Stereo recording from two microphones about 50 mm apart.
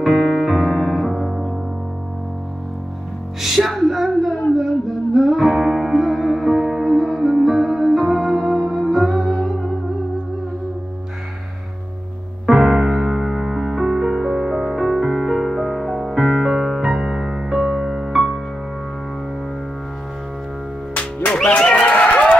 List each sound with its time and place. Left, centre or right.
0.0 s music: centre
3.3 s music: centre
12.4 s music: centre
20.9 s music: left
21.5 s a sound: left